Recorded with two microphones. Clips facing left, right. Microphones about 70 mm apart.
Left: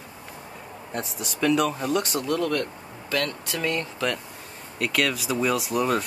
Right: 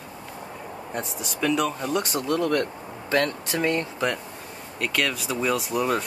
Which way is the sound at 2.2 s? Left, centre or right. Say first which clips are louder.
Right 2 dB; centre.